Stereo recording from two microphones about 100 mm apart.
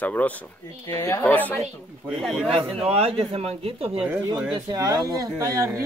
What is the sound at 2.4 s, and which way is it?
A man's voice, 75° right (ahead or behind).